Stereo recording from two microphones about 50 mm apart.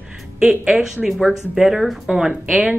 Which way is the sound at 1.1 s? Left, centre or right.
Centre.